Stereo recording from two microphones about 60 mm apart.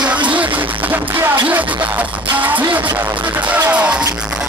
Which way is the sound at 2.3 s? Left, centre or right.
Right.